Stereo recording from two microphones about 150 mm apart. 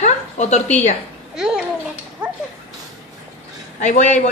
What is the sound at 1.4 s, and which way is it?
Speech, 5° right (ahead or behind).